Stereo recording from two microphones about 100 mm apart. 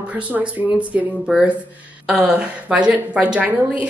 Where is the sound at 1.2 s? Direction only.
5° right (ahead or behind).